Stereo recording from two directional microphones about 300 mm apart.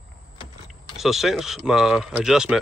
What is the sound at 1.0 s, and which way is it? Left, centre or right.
Speech, centre.